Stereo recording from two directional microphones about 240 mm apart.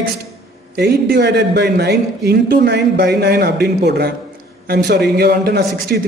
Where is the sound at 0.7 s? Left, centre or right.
Right.